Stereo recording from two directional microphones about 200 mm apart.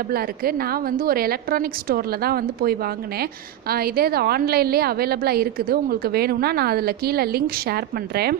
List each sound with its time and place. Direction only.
0.1 s a woman's voice: 50° right (ahead or behind)